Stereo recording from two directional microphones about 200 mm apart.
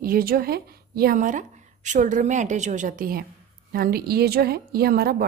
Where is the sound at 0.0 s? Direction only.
45° right (ahead or behind).